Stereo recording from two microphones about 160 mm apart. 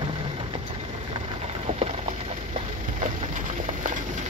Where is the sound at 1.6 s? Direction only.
40° right (ahead or behind).